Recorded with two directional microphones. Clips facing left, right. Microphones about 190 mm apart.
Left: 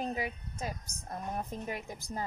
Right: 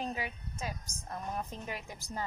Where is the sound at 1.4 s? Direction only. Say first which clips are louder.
Left 2 dB; 35° left (ahead or behind).